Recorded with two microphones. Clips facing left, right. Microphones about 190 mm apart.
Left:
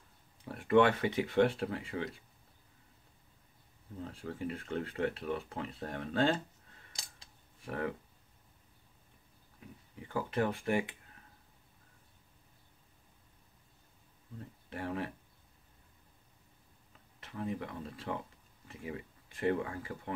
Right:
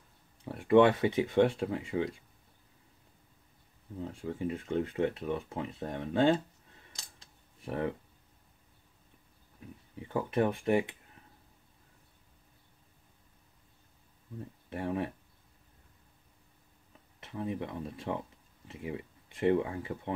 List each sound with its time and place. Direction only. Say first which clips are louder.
0.5 s speech: right 4 dB; 20° right (ahead or behind)
4.0 s speech: right 4 dB; 15° right (ahead or behind)
7.6 s speech: right 3 dB; 25° right (ahead or behind)
9.9 s speech: right 4 dB; 25° right (ahead or behind)
14.7 s speech: right 4 dB; 20° right (ahead or behind)
17.2 s speech: right 2 dB; 25° right (ahead or behind)